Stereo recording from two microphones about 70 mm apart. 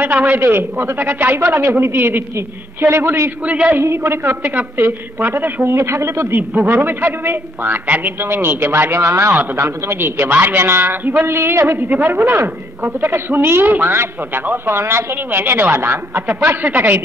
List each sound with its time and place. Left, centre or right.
0.0 s a woman's voice: right
0.4 s a man's voice: right
3.4 s a man's voice: centre
3.8 s a man's voice: right
6.7 s a man's voice: right
11.9 s a woman's voice: right
16.4 s a woman's voice: right